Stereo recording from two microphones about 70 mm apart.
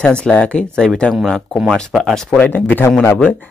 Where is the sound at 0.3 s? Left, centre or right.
Centre.